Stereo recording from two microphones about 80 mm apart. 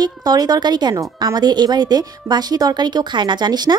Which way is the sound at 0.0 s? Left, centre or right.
Right.